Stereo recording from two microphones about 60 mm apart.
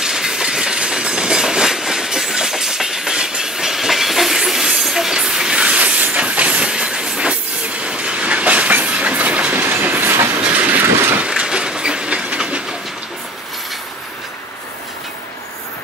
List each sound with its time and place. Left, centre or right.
0.0 s train: centre